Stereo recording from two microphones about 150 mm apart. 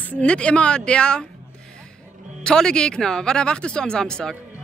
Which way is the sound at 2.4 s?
5° left (ahead or behind).